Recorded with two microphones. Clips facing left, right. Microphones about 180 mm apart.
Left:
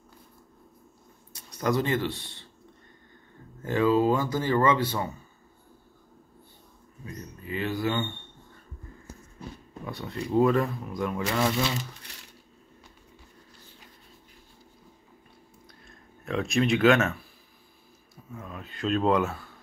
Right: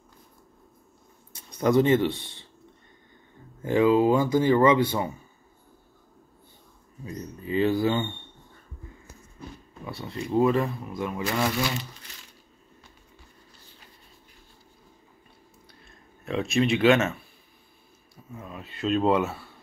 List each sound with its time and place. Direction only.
1.6 s speech: 20° right (ahead or behind)
3.6 s speech: 15° right (ahead or behind)
7.1 s speech: 30° right (ahead or behind)
9.8 s speech: centre (ahead or behind)
16.3 s speech: centre (ahead or behind)
18.3 s speech: 5° right (ahead or behind)